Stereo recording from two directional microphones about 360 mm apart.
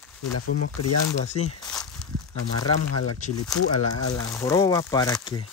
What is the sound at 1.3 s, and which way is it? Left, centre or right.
Speech, centre.